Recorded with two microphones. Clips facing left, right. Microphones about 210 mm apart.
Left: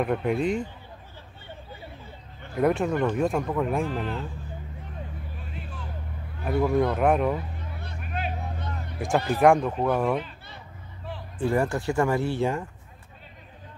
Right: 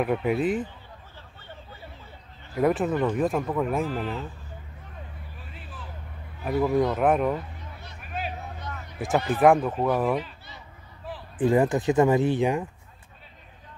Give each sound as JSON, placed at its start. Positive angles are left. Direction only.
{"t": 0.0, "sound": "speech", "side_deg": -5}
{"t": 2.5, "sound": "speech", "side_deg": 0}
{"t": 6.4, "sound": "speech", "side_deg": 0}
{"t": 8.0, "sound": "vehicle", "side_deg": 0}
{"t": 8.9, "sound": "speech", "side_deg": 0}
{"t": 11.3, "sound": "speech", "side_deg": -15}